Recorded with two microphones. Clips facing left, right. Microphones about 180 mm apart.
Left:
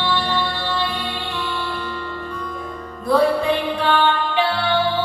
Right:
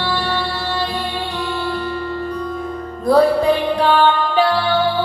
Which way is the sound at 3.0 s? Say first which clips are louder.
Right 4 dB; 40° right (ahead or behind).